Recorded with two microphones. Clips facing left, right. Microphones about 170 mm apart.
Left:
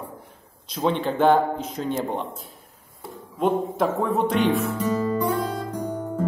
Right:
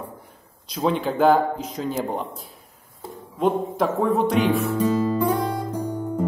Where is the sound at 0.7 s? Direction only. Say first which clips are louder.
Right 1 dB; centre (ahead or behind).